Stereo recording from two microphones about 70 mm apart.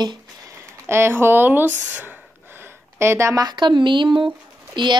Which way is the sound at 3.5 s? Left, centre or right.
Right.